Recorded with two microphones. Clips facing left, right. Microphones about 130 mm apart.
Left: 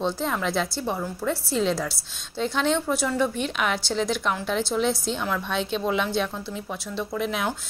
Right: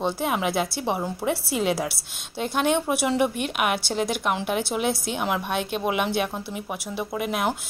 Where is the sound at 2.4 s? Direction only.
55° right (ahead or behind).